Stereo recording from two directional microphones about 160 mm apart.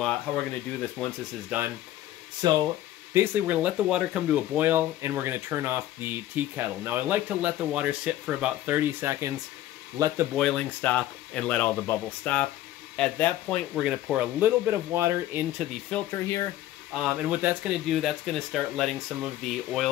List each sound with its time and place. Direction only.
1.0 s speech: 5° left (ahead or behind)
1.5 s speech: 10° right (ahead or behind)
2.4 s speech: 25° right (ahead or behind)
3.1 s speech: 10° right (ahead or behind)
10.3 s speech: 5° left (ahead or behind)
13.8 s speech: 5° right (ahead or behind)
16.1 s speech: 20° left (ahead or behind)
16.9 s speech: 5° right (ahead or behind)